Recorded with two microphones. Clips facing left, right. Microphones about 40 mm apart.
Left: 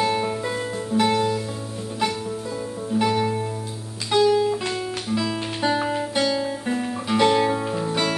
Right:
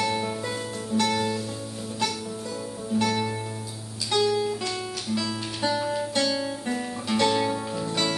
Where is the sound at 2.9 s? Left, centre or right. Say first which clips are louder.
Left 4 dB; centre.